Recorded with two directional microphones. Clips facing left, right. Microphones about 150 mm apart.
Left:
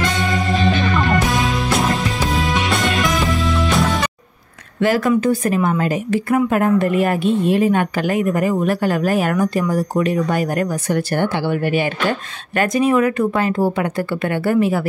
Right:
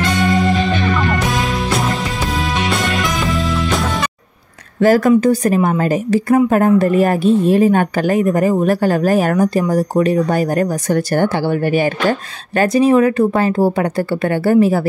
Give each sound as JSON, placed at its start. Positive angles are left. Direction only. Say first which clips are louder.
{"t": 0.3, "sound": "music", "louder": "right 3 dB", "side_deg": 0}
{"t": 4.7, "sound": "a woman's voice", "louder": "right 5 dB", "side_deg": -40}